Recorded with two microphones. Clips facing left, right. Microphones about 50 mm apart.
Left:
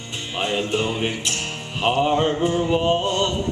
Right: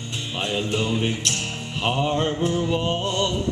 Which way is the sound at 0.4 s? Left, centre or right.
Centre.